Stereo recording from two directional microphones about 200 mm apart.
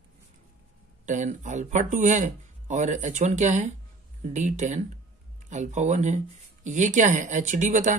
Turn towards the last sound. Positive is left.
turn(degrees=-35)  # may be behind; listen again after turning